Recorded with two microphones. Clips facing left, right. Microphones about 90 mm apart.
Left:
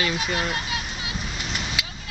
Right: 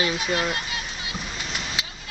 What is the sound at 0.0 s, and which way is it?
Speech, 20° right (ahead or behind).